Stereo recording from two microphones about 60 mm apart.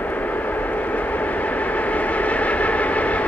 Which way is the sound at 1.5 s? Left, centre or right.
Left.